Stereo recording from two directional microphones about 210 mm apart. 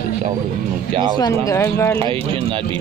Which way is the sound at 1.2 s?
15° left (ahead or behind).